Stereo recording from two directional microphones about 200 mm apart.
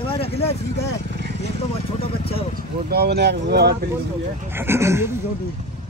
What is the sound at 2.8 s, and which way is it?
Speech, 55° right (ahead or behind).